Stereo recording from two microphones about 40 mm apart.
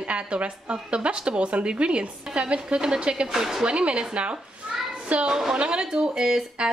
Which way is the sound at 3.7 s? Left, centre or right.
Right.